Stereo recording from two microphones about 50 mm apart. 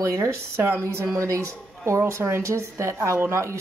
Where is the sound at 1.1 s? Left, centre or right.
Right.